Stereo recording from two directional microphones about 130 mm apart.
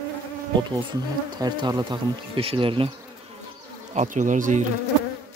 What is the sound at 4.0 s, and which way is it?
Speech, 75° right (ahead or behind).